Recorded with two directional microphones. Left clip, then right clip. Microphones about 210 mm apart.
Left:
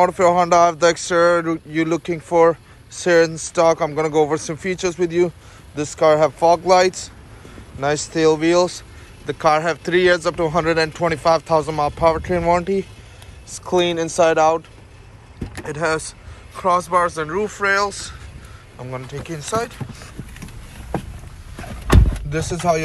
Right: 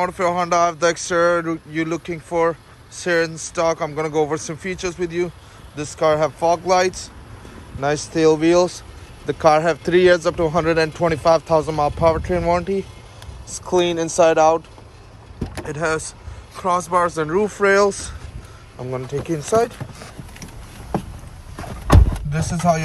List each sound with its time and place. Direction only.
0.0 s speech: 5° right (ahead or behind)
15.6 s speech: 15° right (ahead or behind); by 18.1 s 35° right (ahead or behind)
18.8 s speech: 20° right (ahead or behind)
19.0 s speech: 35° right (ahead or behind)
22.3 s speech: 5° right (ahead or behind)